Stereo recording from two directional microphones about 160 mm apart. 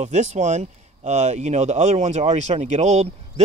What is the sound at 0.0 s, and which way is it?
Speech, 45° right (ahead or behind).